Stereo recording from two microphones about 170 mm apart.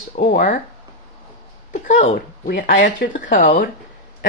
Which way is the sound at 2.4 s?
55° left (ahead or behind).